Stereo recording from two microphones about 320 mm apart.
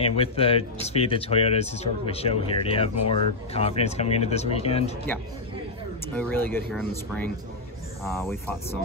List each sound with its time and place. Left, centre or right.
0.0 s speech: centre
6.1 s speech: centre